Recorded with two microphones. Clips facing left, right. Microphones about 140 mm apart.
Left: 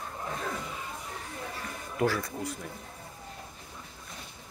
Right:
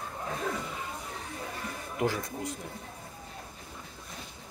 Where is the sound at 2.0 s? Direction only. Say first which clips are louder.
Left 2 dB; 20° right (ahead or behind).